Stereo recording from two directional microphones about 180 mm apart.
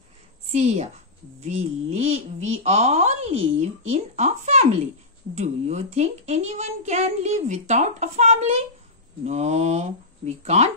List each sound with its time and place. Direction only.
0.5 s a woman's voice: 40° right (ahead or behind)